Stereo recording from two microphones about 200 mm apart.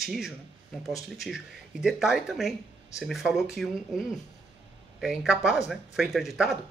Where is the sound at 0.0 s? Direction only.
Centre (ahead or behind).